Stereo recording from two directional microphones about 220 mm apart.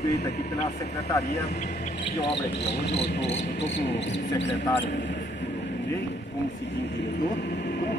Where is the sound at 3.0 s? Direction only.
50° left (ahead or behind).